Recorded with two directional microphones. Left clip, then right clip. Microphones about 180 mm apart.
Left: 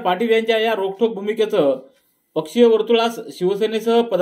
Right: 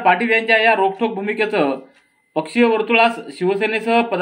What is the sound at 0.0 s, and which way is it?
Speech, 45° left (ahead or behind).